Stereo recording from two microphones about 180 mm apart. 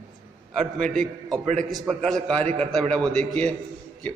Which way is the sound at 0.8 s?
Centre (ahead or behind).